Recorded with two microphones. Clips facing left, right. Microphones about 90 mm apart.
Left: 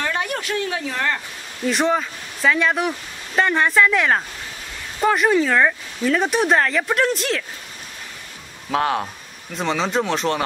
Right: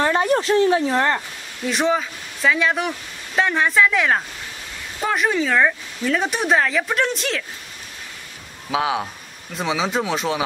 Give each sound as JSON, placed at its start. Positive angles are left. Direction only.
{"t": 0.0, "sound": "speech", "side_deg": -30}
{"t": 1.7, "sound": "speech", "side_deg": 0}
{"t": 8.6, "sound": "speech", "side_deg": -5}